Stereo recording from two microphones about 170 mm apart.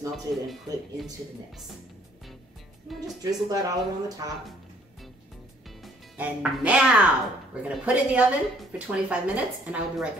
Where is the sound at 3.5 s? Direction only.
20° right (ahead or behind).